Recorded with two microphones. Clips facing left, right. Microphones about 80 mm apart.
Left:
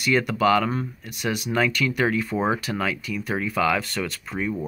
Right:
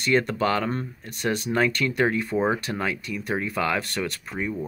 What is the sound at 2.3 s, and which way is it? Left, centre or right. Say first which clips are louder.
Speech: even; centre.